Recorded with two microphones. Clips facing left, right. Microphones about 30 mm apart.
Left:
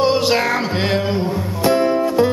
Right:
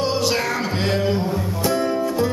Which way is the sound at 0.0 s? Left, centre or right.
Left.